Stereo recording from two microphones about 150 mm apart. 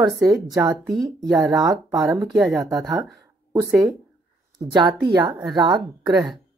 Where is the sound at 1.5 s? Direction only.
25° right (ahead or behind).